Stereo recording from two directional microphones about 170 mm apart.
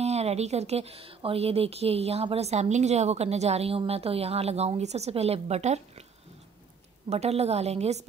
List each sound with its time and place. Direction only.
0.0 s a woman's voice: 40° right (ahead or behind)
7.1 s a woman's voice: 40° right (ahead or behind)